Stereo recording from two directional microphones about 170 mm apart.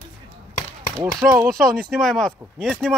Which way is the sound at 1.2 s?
20° right (ahead or behind).